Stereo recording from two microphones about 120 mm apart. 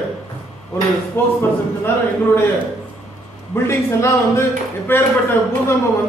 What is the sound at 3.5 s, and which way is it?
Speech, 20° left (ahead or behind).